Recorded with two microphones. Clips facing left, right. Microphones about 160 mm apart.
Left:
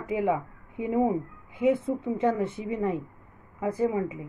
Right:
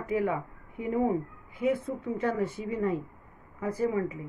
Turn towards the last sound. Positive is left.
turn(degrees=20)  # may be behind; listen again after turning